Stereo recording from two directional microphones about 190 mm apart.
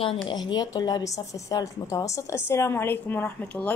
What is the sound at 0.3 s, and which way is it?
Speech, 20° left (ahead or behind).